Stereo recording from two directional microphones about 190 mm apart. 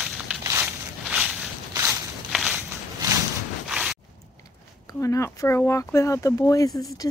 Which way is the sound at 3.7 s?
5° right (ahead or behind).